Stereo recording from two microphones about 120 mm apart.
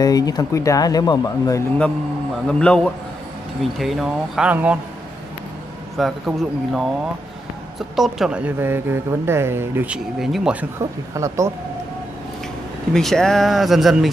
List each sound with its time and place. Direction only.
0.0 s speech: 30° left (ahead or behind)
2.4 s a man's voice: 5° left (ahead or behind)
4.5 s a woman's voice: 15° right (ahead or behind)
5.9 s speech: centre (ahead or behind)
7.9 s a woman's voice: centre (ahead or behind); by 9.9 s 20° right (ahead or behind)
9.9 s speech: centre (ahead or behind)
10.8 s speech: 25° right (ahead or behind)
12.9 s speech: 5° left (ahead or behind)